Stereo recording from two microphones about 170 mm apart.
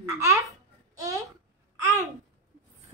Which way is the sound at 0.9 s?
20° right (ahead or behind).